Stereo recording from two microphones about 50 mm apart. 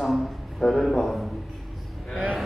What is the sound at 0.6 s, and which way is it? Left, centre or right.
Speech, centre.